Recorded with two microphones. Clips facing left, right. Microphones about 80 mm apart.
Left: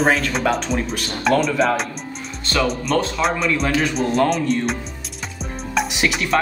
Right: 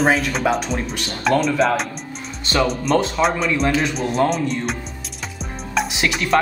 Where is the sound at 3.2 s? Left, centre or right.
Right.